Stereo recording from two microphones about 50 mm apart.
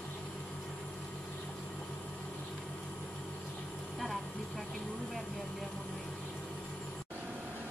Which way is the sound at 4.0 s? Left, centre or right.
Centre.